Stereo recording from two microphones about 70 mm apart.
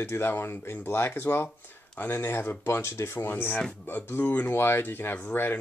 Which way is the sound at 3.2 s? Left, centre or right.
Left.